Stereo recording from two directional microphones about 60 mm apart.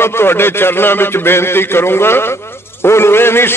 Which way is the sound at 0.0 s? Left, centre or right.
Left.